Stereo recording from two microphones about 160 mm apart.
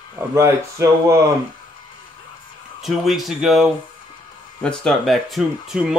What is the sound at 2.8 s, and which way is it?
Speech, centre (ahead or behind).